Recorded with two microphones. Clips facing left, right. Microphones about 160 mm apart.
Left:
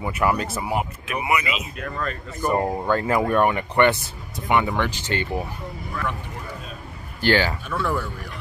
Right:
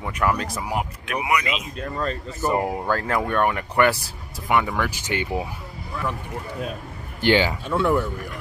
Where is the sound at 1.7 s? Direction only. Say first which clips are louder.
Right 2 dB; 30° right (ahead or behind).